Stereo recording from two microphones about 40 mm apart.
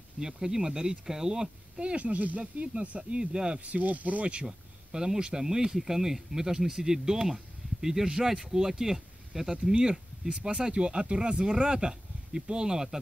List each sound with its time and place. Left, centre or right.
0.2 s speech: centre
1.8 s speech: right
3.6 s speech: right
4.9 s speech: centre